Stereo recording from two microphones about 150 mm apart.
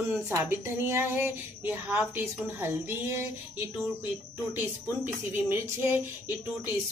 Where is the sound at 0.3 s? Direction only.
15° right (ahead or behind).